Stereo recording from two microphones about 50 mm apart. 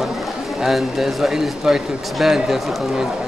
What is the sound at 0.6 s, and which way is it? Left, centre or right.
Speech, centre.